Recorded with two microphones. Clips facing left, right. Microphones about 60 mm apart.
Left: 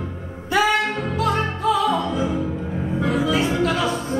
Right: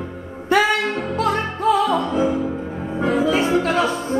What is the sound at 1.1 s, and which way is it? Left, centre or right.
Music, right.